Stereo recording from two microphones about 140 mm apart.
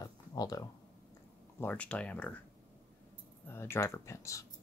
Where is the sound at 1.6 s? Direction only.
10° left (ahead or behind).